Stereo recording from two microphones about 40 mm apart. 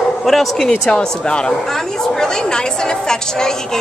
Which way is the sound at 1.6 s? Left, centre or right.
Centre.